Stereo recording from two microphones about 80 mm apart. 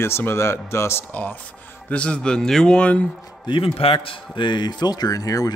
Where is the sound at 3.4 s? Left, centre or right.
Left.